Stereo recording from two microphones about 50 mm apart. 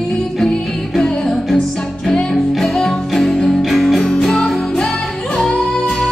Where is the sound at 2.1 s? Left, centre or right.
Centre.